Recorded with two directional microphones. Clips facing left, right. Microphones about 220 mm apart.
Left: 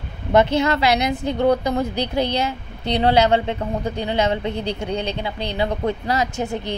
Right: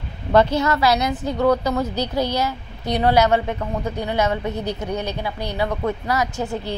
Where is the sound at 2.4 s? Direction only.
25° left (ahead or behind).